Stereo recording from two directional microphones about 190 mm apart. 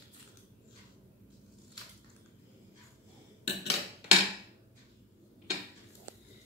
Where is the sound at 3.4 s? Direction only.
30° left (ahead or behind).